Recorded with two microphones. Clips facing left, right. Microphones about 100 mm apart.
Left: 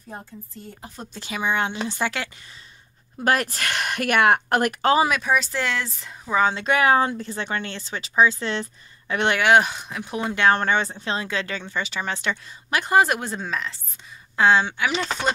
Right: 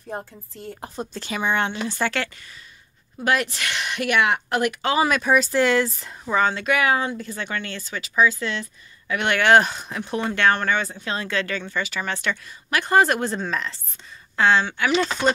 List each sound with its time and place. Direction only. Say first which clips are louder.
0.1 s a woman's voice: right 5 dB; 65° right (ahead or behind)
1.1 s speech: right 1 dB; 5° left (ahead or behind)
1.7 s speech: right 1 dB; 15° left (ahead or behind)
3.3 s speech: left 1 dB; 45° left (ahead or behind)
5.0 s speech: right 2 dB; centre (ahead or behind)
6.3 s speech: even; 15° left (ahead or behind)
6.6 s speech: left 2 dB; 30° left (ahead or behind)
9.4 s speech: right 2 dB; 5° left (ahead or behind)
10.5 s speech: left 2 dB; 25° left (ahead or behind)
12.9 s speech: right 1 dB; 5° left (ahead or behind)
14.3 s speech: left 1 dB; 15° left (ahead or behind)
15.2 s speech: right 3 dB; 10° left (ahead or behind)